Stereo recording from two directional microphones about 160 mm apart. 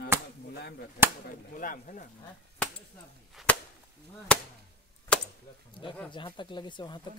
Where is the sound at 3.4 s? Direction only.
Centre (ahead or behind).